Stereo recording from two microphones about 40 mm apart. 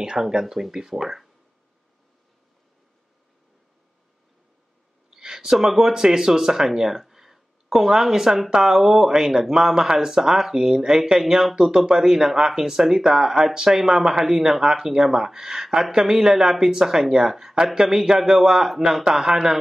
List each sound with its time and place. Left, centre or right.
0.0 s speech: centre
5.1 s speech: centre
19.0 s a man's voice: centre